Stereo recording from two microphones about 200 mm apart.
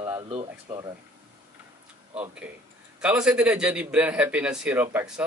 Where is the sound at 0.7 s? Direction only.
20° right (ahead or behind).